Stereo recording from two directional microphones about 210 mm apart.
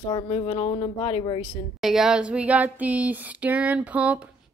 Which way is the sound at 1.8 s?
Centre (ahead or behind).